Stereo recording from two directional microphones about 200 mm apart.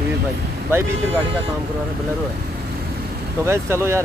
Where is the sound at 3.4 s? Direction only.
15° right (ahead or behind).